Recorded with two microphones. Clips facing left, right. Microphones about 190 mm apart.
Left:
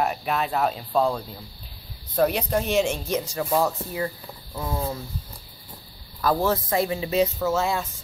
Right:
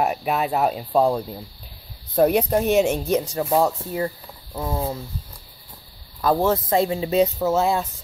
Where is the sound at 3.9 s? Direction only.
30° right (ahead or behind).